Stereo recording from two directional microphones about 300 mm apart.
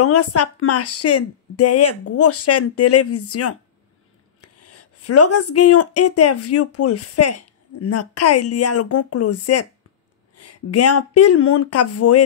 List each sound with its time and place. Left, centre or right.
0.0 s speech: left